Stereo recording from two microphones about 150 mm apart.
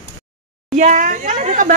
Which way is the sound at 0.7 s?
55° right (ahead or behind).